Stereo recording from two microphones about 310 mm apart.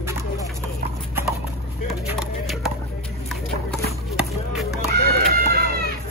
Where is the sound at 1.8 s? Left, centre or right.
Centre.